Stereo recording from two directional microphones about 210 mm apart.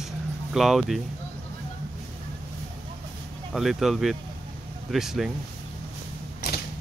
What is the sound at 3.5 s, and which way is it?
Speech, centre (ahead or behind).